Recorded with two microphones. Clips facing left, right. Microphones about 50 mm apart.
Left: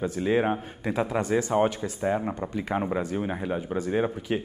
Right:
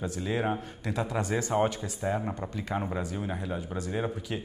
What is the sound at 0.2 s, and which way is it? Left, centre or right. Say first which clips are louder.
Speech: left 6 dB; left.